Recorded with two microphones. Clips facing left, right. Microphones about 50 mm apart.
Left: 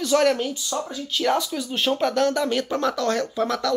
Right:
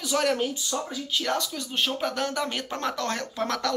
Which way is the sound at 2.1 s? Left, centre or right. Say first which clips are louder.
Left 7 dB; centre.